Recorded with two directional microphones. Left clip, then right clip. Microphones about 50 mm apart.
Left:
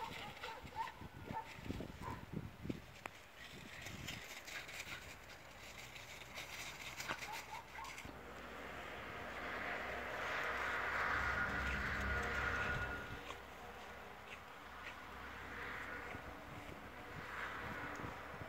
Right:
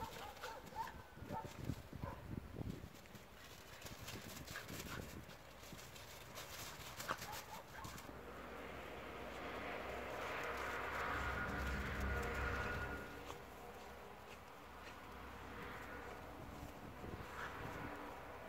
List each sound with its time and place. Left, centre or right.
0.0 s a sound: right
7.1 s a sound: right
8.5 s vehicle: centre
8.8 s vehicle: centre
15.5 s vehicle: centre
17.4 s vehicle: centre